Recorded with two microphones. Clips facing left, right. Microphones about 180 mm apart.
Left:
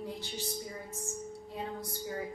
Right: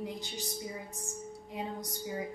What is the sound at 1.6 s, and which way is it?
Speech, 15° right (ahead or behind).